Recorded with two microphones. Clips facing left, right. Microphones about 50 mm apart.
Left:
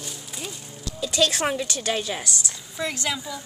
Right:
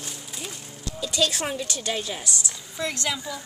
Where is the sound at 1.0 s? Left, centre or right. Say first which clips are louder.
Left 3 dB; left.